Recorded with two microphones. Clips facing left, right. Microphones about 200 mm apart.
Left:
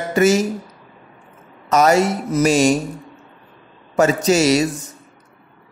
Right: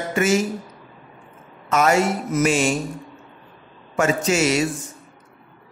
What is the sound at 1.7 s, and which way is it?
A woman's voice, 40° left (ahead or behind).